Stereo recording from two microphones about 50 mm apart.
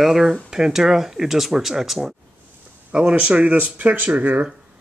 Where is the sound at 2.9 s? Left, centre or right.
Right.